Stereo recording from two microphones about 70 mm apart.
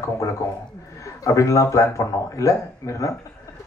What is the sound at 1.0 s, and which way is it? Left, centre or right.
Speech, left.